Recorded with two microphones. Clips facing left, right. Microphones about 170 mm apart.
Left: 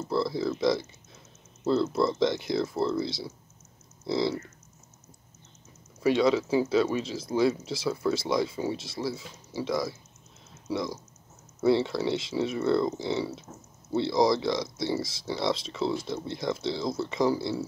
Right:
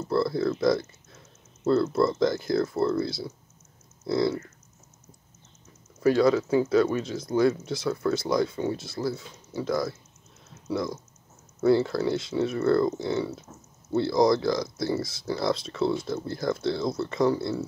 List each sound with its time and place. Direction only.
0.1 s speech: centre (ahead or behind)
4.0 s a sound: centre (ahead or behind)
6.0 s speech: 25° left (ahead or behind)
6.3 s speech: 5° left (ahead or behind)